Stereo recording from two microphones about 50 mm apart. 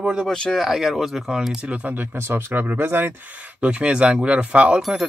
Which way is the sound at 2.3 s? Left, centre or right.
Right.